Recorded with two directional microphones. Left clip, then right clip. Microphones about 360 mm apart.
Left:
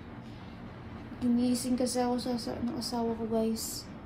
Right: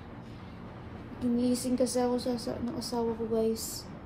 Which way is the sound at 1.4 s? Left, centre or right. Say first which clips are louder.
Right 4 dB; centre.